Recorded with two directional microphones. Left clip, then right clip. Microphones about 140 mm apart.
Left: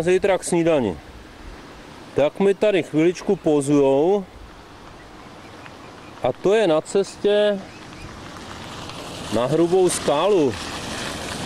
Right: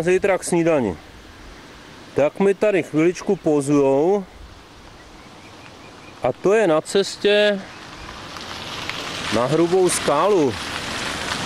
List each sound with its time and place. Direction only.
0.0 s speech: centre (ahead or behind)
2.1 s speech: centre (ahead or behind)
6.2 s speech: centre (ahead or behind)
6.8 s speech: 25° right (ahead or behind)
8.4 s a sound: 45° right (ahead or behind)
9.3 s speech: 5° right (ahead or behind)